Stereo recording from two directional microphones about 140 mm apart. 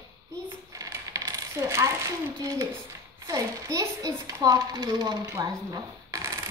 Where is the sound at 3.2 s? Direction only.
25° right (ahead or behind).